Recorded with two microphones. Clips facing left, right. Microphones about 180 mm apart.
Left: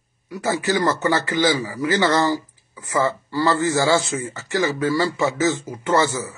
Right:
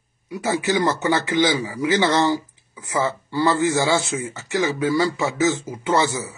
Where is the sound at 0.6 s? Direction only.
10° right (ahead or behind).